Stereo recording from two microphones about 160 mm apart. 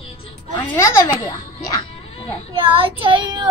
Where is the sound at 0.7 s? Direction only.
20° left (ahead or behind).